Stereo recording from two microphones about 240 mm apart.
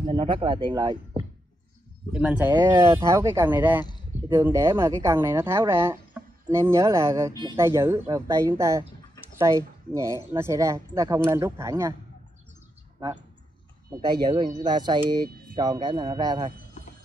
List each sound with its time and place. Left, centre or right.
0.0 s speech: right
2.1 s a woman's voice: centre
14.2 s a woman's voice: centre